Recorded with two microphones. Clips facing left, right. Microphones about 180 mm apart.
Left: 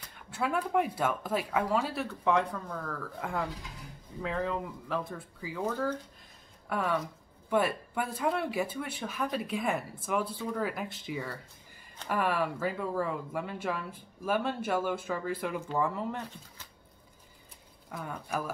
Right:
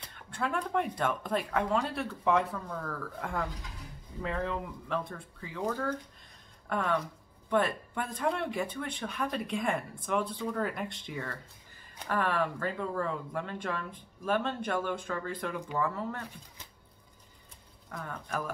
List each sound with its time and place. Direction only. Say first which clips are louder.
0.3 s speech: left 2 dB; 5° left (ahead or behind)
17.9 s speech: left 2 dB; 10° left (ahead or behind)